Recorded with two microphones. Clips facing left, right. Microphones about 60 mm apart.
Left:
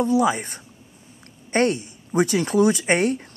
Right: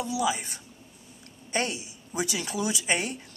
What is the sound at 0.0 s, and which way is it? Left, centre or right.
Speech, left.